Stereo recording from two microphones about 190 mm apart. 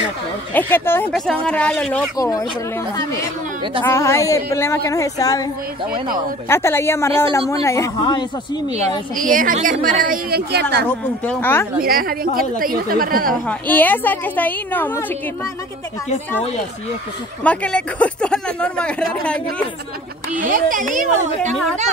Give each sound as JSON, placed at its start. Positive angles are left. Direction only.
{"t": 0.5, "sound": "a woman's voice", "side_deg": 10}
{"t": 2.1, "sound": "speech", "side_deg": 20}
{"t": 3.8, "sound": "a woman's voice", "side_deg": 15}
{"t": 6.5, "sound": "a woman's voice", "side_deg": 15}
{"t": 8.6, "sound": "a woman's voice", "side_deg": -35}
{"t": 11.2, "sound": "a woman's voice", "side_deg": 10}
{"t": 11.8, "sound": "a woman's voice", "side_deg": -50}
{"t": 13.3, "sound": "a woman's voice", "side_deg": 10}
{"t": 17.4, "sound": "speech", "side_deg": 5}
{"t": 20.3, "sound": "a woman's voice", "side_deg": -45}